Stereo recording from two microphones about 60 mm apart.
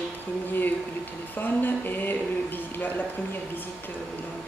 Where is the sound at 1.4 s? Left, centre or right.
Left.